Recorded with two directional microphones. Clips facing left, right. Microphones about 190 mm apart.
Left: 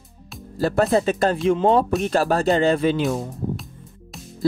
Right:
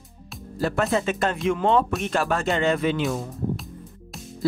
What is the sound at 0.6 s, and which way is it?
Speech, 35° left (ahead or behind).